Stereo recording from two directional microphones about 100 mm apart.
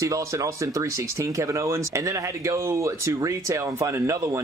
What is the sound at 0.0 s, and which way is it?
Speech, 30° right (ahead or behind).